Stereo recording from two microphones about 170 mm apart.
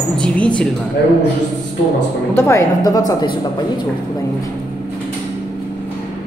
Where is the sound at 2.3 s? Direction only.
15° left (ahead or behind).